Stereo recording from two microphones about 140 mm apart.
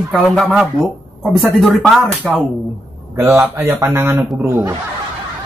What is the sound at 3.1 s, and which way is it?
A man's voice, 20° right (ahead or behind).